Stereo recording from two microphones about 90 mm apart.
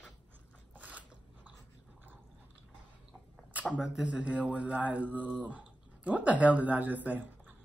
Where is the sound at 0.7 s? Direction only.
15° right (ahead or behind).